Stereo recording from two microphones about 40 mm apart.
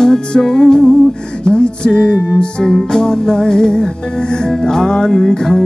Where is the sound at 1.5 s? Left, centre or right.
Left.